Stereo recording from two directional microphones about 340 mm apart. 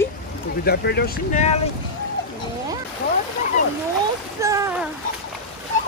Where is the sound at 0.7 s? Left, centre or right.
Left.